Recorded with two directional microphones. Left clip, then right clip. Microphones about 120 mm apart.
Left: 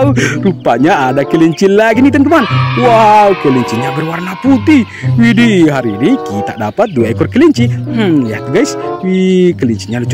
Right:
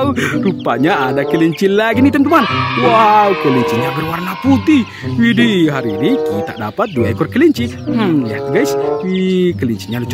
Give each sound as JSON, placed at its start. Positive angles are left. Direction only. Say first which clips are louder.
{"t": 0.0, "sound": "speech", "louder": "left 4 dB", "side_deg": 20}
{"t": 2.4, "sound": "speech", "louder": "left 3 dB", "side_deg": 0}
{"t": 4.5, "sound": "speech", "louder": "left 4 dB", "side_deg": 15}
{"t": 9.2, "sound": "speech", "louder": "left 8 dB", "side_deg": 20}